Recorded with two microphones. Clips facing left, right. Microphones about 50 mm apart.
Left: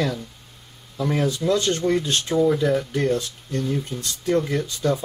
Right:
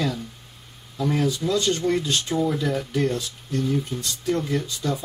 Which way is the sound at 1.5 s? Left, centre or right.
Left.